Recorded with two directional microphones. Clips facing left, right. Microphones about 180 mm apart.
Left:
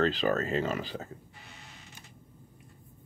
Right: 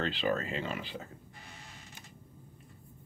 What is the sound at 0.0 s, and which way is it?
Speech, 40° left (ahead or behind).